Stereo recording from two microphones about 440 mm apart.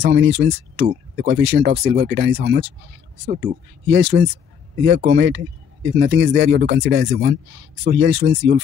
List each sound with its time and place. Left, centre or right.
0.0 s speech: right